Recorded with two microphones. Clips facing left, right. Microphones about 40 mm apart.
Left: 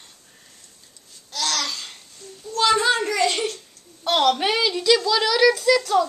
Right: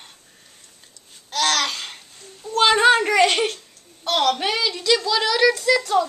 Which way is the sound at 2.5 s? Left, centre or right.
Right.